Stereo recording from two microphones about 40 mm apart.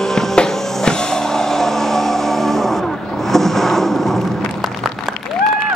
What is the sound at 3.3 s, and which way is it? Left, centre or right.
Boat, centre.